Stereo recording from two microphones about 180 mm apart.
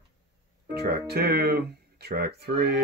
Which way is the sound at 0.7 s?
65° right (ahead or behind).